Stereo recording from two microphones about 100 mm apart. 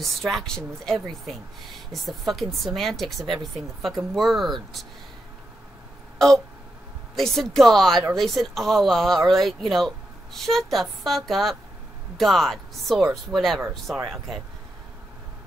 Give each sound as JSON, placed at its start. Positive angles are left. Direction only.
{"t": 0.0, "sound": "speech", "side_deg": 0}
{"t": 6.1, "sound": "a sound", "side_deg": 5}
{"t": 7.2, "sound": "speech", "side_deg": 0}